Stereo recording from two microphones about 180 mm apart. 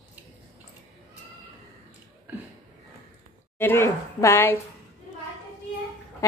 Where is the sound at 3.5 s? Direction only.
10° left (ahead or behind).